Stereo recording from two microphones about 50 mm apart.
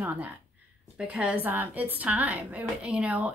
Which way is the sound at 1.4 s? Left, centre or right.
Right.